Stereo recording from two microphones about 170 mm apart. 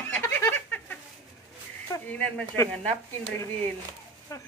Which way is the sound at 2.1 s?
5° left (ahead or behind).